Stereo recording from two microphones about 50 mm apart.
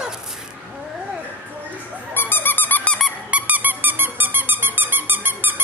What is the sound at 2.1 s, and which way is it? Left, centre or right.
Dog, left.